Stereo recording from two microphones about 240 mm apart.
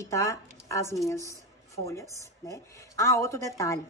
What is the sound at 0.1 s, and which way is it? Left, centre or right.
Speech, centre.